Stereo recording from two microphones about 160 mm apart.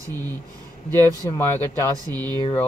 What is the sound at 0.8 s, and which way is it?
Speech, 25° right (ahead or behind).